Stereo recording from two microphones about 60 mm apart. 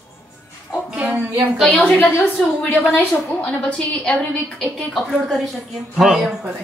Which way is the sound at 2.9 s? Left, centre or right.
Left.